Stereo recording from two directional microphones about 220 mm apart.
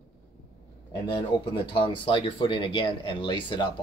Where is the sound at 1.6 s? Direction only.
20° left (ahead or behind).